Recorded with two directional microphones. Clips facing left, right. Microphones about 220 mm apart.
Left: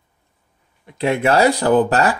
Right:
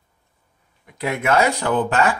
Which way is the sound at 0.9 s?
30° left (ahead or behind).